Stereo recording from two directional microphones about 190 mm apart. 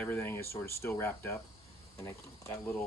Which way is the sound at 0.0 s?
10° left (ahead or behind).